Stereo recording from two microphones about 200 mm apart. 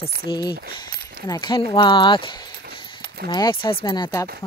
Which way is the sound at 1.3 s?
20° left (ahead or behind).